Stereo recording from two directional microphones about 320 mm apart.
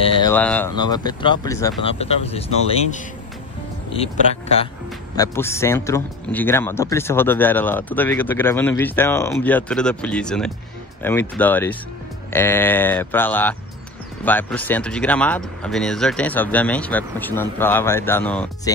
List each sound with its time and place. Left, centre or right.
0.0 s a man's voice: centre
3.9 s a man's voice: centre